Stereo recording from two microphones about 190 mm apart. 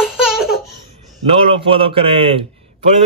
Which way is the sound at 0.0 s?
Centre (ahead or behind).